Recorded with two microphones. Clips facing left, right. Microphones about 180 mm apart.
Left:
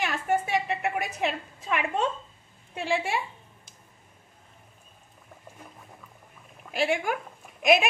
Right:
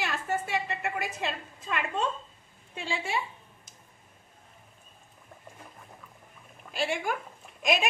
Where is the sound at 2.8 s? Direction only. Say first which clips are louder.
Left 6 dB; 60° left (ahead or behind).